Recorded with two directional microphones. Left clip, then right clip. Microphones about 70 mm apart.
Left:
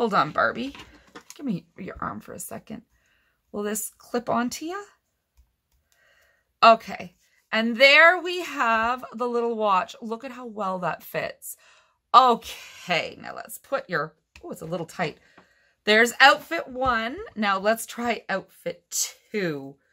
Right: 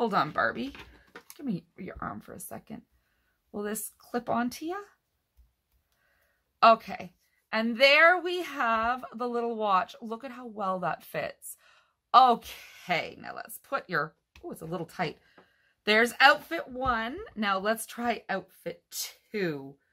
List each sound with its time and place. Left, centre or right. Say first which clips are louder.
0.0 s a woman's voice: left 5 dB; left
6.6 s a woman's voice: left 4 dB; left
13.6 s speech: left 3 dB; centre
14.4 s speech: left 5 dB; left
16.4 s a woman's voice: left 5 dB; left